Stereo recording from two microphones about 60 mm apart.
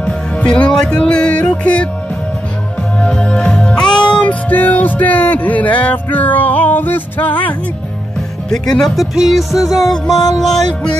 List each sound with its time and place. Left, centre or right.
0.0 s music: centre
3.0 s music: centre
9.1 s music: centre